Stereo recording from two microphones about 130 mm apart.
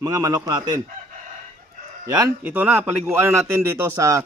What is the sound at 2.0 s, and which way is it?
Speech, 30° right (ahead or behind).